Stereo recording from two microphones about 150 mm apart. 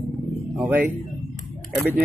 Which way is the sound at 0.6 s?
10° right (ahead or behind).